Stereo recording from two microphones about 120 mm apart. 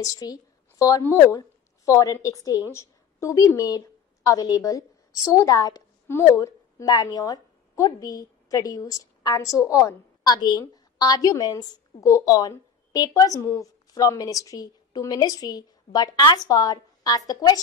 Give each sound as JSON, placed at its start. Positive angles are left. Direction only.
{"t": 0.0, "sound": "a woman's voice", "side_deg": 30}